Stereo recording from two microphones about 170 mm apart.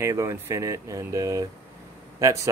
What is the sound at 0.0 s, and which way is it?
Speech, 15° right (ahead or behind).